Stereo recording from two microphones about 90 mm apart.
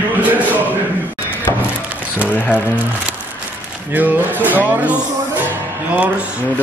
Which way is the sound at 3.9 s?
20° right (ahead or behind).